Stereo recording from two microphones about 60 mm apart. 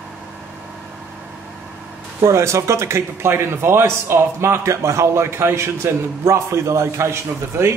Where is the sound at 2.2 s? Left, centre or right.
Right.